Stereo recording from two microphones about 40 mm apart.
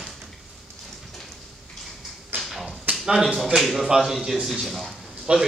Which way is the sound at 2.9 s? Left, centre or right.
Right.